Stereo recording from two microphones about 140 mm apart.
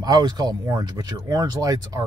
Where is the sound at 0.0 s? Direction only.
30° right (ahead or behind).